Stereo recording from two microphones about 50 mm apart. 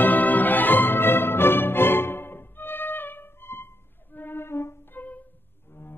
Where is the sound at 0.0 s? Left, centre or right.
Left.